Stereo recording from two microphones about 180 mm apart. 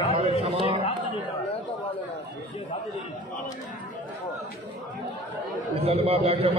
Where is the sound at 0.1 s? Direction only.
35° right (ahead or behind).